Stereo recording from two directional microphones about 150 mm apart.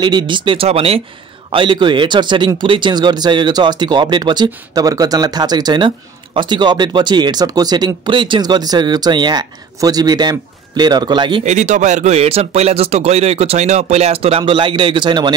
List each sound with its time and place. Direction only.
0.0 s speech: 30° right (ahead or behind)
11.4 s speech: 50° right (ahead or behind); by 15.3 s 30° right (ahead or behind)